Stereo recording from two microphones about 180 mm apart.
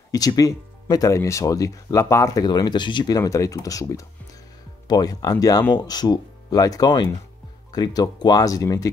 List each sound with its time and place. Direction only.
0.1 s speech: 20° left (ahead or behind)